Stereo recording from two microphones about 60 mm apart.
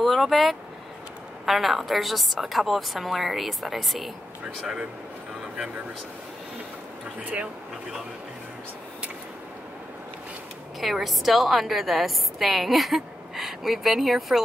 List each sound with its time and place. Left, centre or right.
0.0 s a woman's voice: centre
7.2 s speech: right
10.8 s a woman's voice: centre